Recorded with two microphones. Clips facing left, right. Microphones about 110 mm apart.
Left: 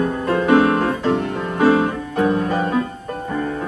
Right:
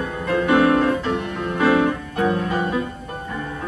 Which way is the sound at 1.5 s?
30° left (ahead or behind).